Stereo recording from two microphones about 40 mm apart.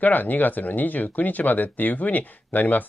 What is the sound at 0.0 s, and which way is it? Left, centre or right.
Speech, left.